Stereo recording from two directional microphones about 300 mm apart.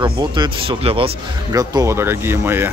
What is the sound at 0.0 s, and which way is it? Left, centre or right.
Speech, centre.